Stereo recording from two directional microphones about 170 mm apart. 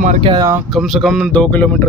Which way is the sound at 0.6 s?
Centre (ahead or behind).